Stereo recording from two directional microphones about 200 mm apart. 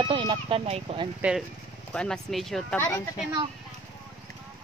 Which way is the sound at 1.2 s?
5° right (ahead or behind).